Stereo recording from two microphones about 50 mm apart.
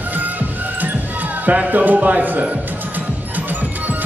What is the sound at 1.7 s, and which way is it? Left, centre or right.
Speech, right.